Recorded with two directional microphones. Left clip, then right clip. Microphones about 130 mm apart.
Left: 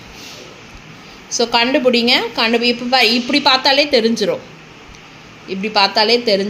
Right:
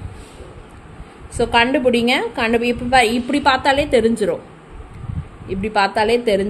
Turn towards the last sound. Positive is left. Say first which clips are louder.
# left 2 dB
turn(degrees=-5)  # may be behind; listen again after turning